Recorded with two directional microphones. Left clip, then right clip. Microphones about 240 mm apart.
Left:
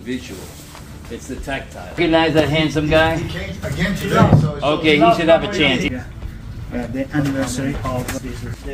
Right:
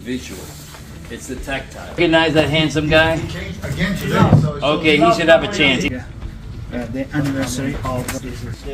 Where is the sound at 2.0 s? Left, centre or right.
Centre.